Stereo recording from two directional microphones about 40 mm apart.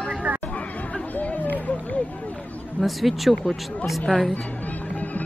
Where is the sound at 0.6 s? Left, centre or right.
Left.